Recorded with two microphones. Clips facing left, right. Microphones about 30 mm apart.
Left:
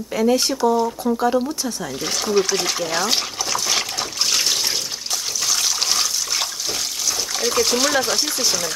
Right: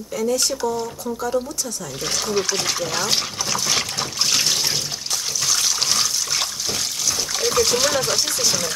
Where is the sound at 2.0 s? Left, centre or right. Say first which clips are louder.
Left 3 dB; centre.